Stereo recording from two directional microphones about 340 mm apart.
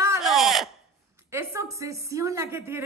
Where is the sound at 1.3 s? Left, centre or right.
Centre.